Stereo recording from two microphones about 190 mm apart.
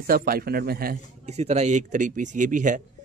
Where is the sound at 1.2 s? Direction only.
35° right (ahead or behind).